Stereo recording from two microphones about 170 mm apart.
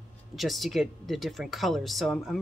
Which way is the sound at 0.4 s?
Centre (ahead or behind).